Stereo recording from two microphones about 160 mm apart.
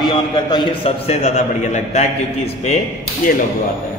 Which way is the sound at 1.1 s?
45° left (ahead or behind).